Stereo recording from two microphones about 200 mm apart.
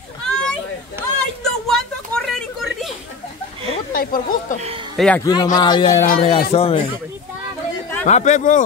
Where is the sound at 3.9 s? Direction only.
45° left (ahead or behind).